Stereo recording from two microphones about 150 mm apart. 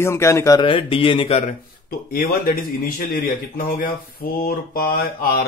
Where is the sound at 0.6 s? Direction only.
35° left (ahead or behind).